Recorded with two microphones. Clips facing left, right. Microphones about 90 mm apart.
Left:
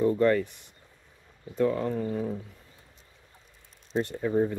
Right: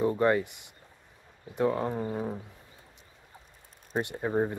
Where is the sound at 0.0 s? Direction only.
15° right (ahead or behind).